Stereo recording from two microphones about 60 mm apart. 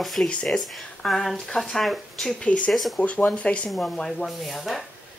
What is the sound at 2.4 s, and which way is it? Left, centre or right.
Speech, left.